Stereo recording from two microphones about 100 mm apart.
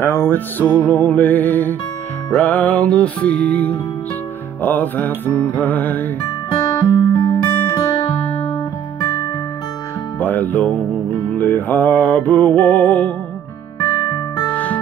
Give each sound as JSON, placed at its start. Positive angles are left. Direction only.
{"t": 0.0, "sound": "music", "side_deg": 25}
{"t": 6.8, "sound": "music", "side_deg": 45}
{"t": 10.1, "sound": "music", "side_deg": 20}
{"t": 13.9, "sound": "music", "side_deg": 50}
{"t": 14.5, "sound": "music", "side_deg": 15}